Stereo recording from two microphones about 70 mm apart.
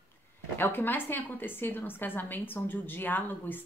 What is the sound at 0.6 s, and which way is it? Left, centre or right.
A woman's voice, left.